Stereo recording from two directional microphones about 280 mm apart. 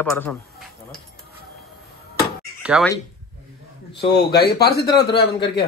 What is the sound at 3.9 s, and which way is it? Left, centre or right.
Speech, left.